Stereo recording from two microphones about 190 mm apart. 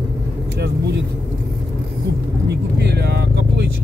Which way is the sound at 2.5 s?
60° right (ahead or behind).